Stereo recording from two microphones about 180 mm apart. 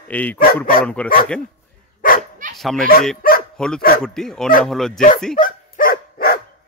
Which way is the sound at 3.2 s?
55° left (ahead or behind).